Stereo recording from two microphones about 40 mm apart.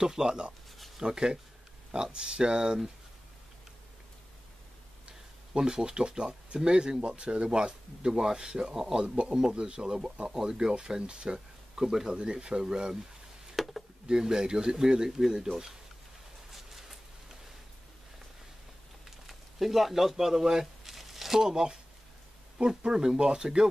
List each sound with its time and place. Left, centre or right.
0.0 s speech: centre
0.7 s a sound: centre
1.0 s speech: centre
5.0 s speech: centre
8.9 s speech: right
11.8 s speech: centre
12.1 s speech: right
13.6 s a sound: centre
14.0 s speech: centre
15.0 s speech: centre
16.5 s a sound: centre
19.0 s a sound: centre
22.6 s speech: centre